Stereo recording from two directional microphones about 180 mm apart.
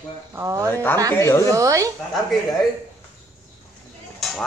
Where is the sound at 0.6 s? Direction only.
10° left (ahead or behind).